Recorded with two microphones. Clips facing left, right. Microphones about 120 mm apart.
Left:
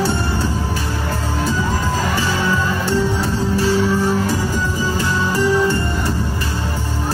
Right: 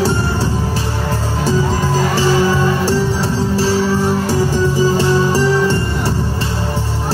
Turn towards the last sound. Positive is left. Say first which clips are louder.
# right 2 dB
turn(degrees=-35)  # may be behind; listen again after turning